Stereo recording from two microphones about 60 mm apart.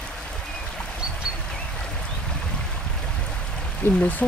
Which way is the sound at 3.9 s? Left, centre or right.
Left.